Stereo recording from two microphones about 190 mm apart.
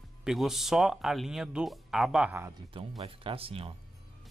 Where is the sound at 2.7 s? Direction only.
30° right (ahead or behind).